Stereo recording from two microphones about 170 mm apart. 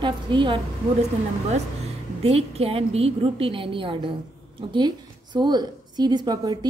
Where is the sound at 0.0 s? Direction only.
30° right (ahead or behind).